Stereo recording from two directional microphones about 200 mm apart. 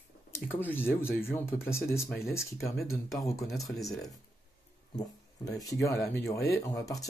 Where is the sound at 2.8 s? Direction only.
Centre (ahead or behind).